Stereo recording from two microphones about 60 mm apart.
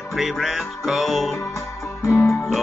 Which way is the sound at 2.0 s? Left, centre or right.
Left.